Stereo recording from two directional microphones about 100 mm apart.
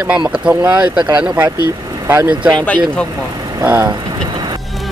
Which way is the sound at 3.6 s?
20° right (ahead or behind).